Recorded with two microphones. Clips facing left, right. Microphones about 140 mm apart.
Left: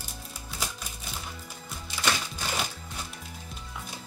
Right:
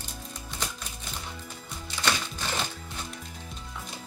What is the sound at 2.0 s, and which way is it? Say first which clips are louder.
Music: even; 10° left (ahead or behind).